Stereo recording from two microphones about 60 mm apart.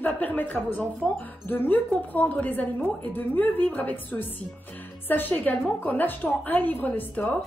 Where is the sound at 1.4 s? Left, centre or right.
Left.